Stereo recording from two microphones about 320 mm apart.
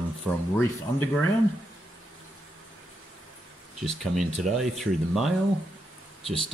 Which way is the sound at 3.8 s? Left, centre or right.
Centre.